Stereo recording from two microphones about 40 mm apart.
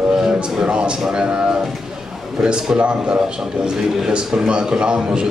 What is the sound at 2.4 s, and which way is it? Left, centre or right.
A man's voice, right.